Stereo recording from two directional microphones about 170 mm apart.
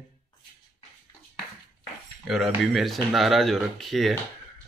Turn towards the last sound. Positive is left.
turn(degrees=0)  # may be behind; listen again after turning